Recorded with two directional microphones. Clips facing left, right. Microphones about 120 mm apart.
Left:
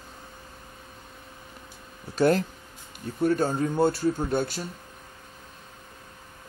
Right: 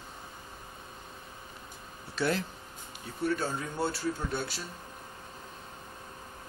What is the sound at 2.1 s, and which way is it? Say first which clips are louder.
Speech: left 9 dB; 45° left (ahead or behind).